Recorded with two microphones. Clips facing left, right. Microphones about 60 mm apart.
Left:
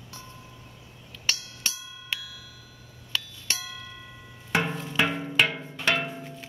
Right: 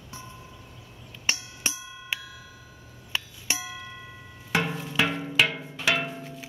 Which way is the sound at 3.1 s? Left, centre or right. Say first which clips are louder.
Right 1 dB; centre.